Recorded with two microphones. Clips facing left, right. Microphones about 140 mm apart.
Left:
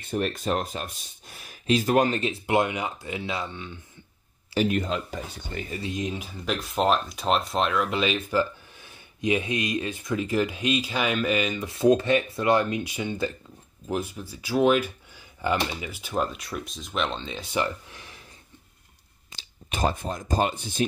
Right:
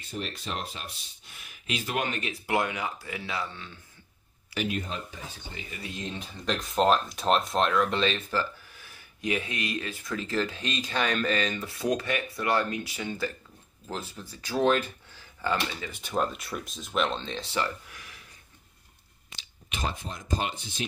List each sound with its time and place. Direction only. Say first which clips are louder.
0.1 s speech: left 9 dB; 50° left (ahead or behind); by 4.7 s 30° left (ahead or behind)
4.8 s speech: left 7 dB; 85° left
5.7 s speech: left 7 dB; 25° left (ahead or behind)
11.7 s speech: left 11 dB; 25° left (ahead or behind)
15.9 s speech: left 1 dB; centre (ahead or behind)
17.4 s speech: left 7 dB; 15° left (ahead or behind)
19.3 s speech: left 5 dB; 45° left (ahead or behind)